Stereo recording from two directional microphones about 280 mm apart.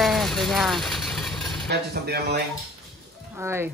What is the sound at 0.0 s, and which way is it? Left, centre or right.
Vehicle, centre.